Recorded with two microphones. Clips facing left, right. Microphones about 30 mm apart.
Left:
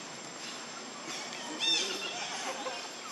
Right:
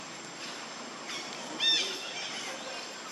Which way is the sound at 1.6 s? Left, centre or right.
Right.